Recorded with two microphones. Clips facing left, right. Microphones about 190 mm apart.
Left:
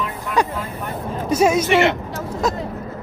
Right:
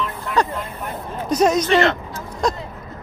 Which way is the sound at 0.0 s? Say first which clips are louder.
Even; 10° left (ahead or behind).